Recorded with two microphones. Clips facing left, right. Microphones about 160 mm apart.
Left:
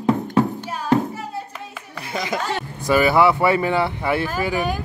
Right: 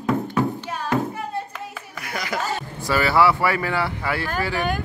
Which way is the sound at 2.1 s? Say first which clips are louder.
Left 3 dB; 20° left (ahead or behind).